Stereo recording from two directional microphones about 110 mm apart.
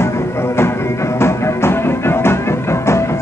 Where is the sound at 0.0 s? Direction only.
25° left (ahead or behind).